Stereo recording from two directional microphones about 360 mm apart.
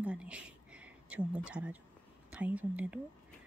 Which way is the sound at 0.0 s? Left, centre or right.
Centre.